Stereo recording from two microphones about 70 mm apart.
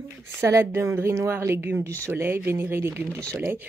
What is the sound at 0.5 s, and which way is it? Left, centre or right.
A woman's voice, right.